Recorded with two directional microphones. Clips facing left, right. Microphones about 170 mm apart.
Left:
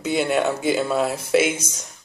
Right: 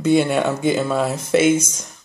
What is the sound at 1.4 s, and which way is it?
Speech, 45° right (ahead or behind).